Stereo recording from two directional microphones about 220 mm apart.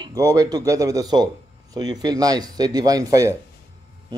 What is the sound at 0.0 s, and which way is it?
Speech, 15° right (ahead or behind).